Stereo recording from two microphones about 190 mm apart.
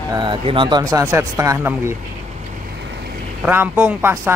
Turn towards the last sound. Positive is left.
turn(degrees=-10)  # may be behind; listen again after turning